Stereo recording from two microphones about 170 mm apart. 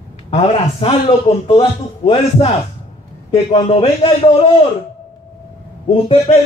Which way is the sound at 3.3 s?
35° left (ahead or behind).